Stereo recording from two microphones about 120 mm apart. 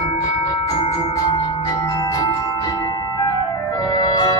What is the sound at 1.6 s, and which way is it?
Music, 35° left (ahead or behind).